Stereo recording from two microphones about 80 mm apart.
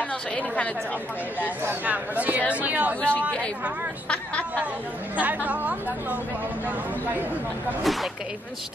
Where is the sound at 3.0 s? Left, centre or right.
Centre.